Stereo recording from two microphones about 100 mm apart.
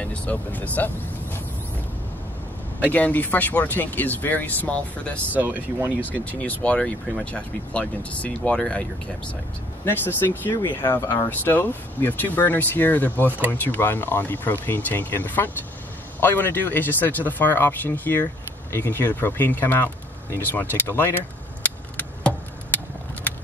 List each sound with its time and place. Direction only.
0.0 s speech: 10° left (ahead or behind)
2.9 s speech: 15° left (ahead or behind)
5.3 s speech: 15° right (ahead or behind)
5.9 s speech: 15° left (ahead or behind)
9.8 s speech: 20° left (ahead or behind)
21.6 s a sound: 15° left (ahead or behind)